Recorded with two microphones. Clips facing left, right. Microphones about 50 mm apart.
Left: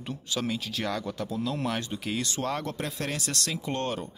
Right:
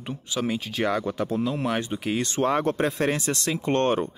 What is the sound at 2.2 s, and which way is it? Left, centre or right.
Speech, right.